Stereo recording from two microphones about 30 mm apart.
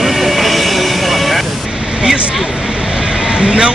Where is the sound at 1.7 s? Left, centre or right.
Right.